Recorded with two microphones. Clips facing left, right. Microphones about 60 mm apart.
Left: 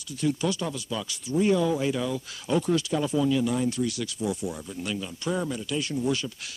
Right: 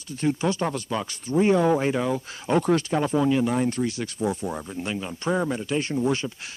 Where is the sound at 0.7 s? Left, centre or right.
Right.